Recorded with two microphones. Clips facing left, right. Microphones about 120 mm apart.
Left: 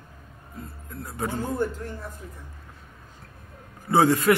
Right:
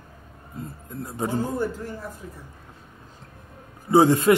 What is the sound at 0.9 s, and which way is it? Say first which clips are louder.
Speech: right 3 dB; 20° right (ahead or behind).